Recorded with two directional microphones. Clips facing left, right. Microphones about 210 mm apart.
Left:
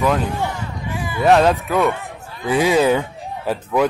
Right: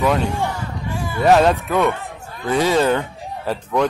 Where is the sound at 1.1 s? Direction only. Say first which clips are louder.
Even; centre (ahead or behind).